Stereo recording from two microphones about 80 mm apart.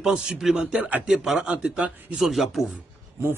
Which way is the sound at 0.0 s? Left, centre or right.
Centre.